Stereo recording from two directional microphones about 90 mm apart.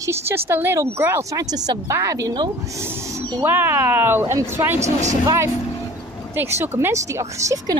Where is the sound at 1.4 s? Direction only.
45° right (ahead or behind).